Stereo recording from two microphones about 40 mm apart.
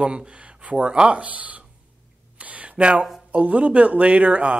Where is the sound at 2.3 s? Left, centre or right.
Right.